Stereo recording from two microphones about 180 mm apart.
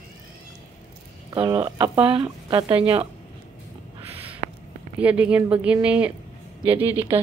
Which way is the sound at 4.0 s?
30° right (ahead or behind).